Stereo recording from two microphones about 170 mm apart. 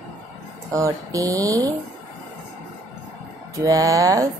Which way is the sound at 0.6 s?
20° right (ahead or behind).